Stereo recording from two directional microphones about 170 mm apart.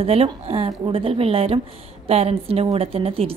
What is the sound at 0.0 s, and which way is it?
A woman's voice, 35° right (ahead or behind).